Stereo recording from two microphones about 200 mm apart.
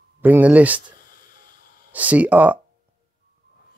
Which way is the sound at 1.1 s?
45° left (ahead or behind).